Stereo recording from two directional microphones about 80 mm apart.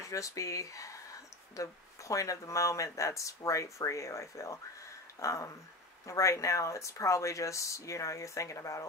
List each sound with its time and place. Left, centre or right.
0.0 s speech: left